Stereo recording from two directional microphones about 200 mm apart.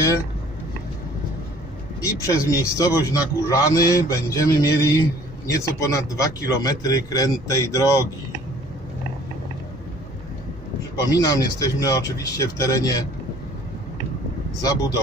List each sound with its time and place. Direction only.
2.0 s a man's voice: 15° left (ahead or behind)
11.0 s a man's voice: 20° left (ahead or behind)
14.6 s a man's voice: 15° left (ahead or behind)